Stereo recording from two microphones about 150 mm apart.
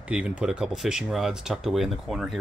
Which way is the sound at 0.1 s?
5° right (ahead or behind).